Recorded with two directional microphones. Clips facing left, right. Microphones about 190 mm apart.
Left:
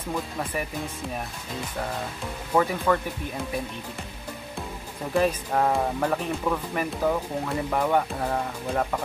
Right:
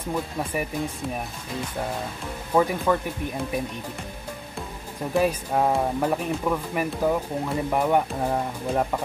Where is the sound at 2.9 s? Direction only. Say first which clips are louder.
Right 1 dB; 15° right (ahead or behind).